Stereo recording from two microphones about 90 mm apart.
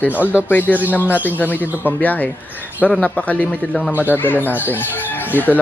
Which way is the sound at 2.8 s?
10° right (ahead or behind).